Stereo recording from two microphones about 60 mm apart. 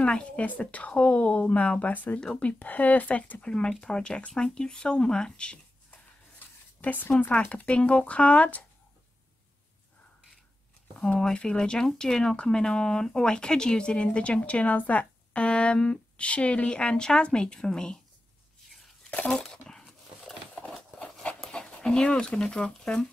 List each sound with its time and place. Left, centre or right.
0.0 s speech: centre
6.4 s a sound: left
7.2 s speech: left
11.0 s speech: centre
19.2 s a sound: centre
21.4 s dog: centre
22.0 s speech: centre